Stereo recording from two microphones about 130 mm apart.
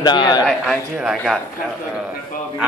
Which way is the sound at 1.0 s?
Centre (ahead or behind).